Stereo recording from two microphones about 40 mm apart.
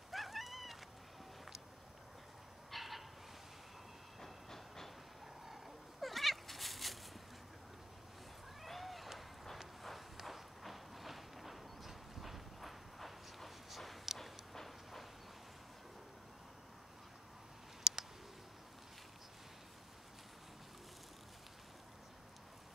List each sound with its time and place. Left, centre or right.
0.1 s cat: centre
2.7 s a sound: centre
4.2 s train: centre
5.4 s cat: centre
8.6 s run: centre
9.8 s walk: centre
17.9 s a sound: centre